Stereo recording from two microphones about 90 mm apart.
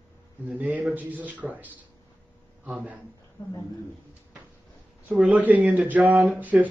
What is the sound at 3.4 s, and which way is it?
Speech, 50° left (ahead or behind).